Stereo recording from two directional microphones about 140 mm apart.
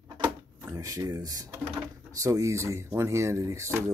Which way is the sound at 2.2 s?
20° right (ahead or behind).